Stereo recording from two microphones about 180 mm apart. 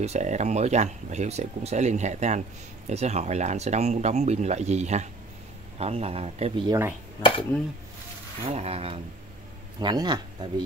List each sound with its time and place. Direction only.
0.0 s speech: 40° right (ahead or behind)
7.2 s speech: 30° left (ahead or behind)
8.5 s speech: 35° right (ahead or behind)